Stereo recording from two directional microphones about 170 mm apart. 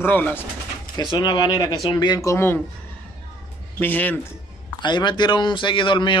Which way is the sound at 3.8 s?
10° left (ahead or behind).